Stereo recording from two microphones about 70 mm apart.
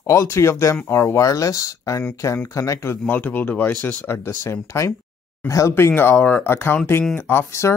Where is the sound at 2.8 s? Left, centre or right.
Left.